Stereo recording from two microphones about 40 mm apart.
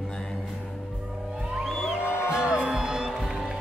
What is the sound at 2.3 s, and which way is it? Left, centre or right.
Music, right.